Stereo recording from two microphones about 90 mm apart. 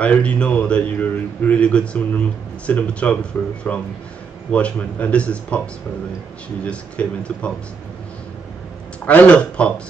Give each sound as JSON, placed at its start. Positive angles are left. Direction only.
{"t": 0.0, "sound": "a man's voice", "side_deg": 15}
{"t": 6.6, "sound": "a man's voice", "side_deg": 15}
{"t": 9.0, "sound": "a man's voice", "side_deg": 15}